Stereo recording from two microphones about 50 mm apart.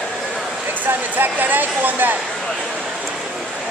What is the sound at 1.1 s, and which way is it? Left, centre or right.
Speech, right.